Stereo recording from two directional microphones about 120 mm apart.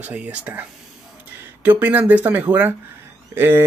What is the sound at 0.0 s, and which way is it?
Speech, 10° right (ahead or behind).